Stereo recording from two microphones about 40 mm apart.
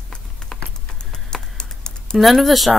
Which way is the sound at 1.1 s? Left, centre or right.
Centre.